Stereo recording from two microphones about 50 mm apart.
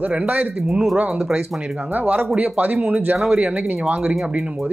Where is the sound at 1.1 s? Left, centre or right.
Centre.